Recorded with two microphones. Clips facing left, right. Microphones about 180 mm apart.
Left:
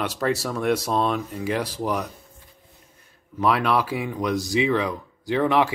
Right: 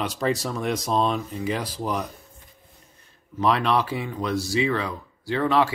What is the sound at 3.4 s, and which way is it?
Speech, 10° left (ahead or behind).